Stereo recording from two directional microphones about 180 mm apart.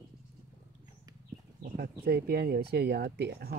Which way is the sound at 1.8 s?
60° right (ahead or behind).